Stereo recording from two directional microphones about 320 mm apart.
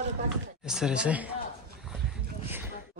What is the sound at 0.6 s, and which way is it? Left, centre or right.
Speech, centre.